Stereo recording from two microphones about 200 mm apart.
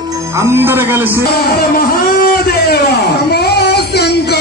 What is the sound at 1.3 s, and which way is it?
Music, 50° left (ahead or behind).